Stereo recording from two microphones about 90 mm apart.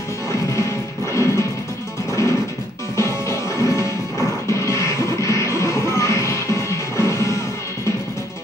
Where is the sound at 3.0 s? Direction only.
35° left (ahead or behind).